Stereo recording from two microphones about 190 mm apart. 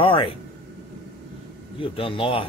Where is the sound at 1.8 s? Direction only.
30° left (ahead or behind).